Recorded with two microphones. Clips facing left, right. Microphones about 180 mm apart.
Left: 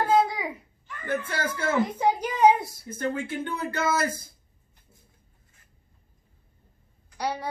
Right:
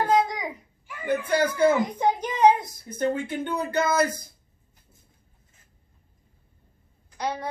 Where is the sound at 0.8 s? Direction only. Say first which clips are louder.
Right 4 dB; 10° right (ahead or behind).